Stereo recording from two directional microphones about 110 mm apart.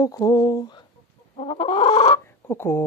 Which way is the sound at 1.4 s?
60° left (ahead or behind).